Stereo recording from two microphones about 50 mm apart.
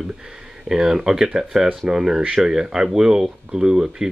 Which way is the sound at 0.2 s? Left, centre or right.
Centre.